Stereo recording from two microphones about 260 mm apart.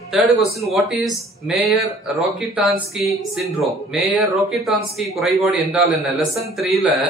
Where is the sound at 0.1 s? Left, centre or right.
Centre.